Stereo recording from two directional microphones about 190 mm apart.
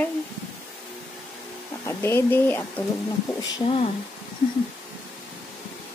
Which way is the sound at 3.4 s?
30° left (ahead or behind).